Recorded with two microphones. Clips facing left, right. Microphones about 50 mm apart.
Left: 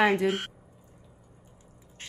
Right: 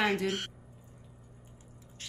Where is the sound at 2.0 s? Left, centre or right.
Left.